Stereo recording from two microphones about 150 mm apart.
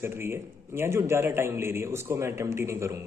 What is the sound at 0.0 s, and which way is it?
A man's voice, 15° right (ahead or behind).